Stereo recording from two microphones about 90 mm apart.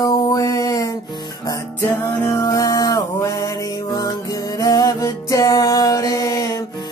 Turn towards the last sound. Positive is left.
turn(degrees=40)  # may be behind; listen again after turning